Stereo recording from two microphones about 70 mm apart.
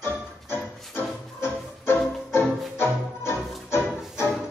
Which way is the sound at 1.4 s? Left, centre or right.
Left.